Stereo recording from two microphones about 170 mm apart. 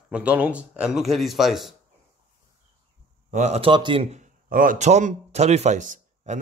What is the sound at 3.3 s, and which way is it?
Speech, 40° right (ahead or behind).